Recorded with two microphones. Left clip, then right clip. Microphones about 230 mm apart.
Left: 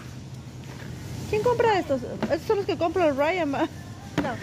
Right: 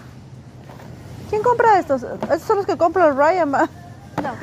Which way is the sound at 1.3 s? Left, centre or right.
Centre.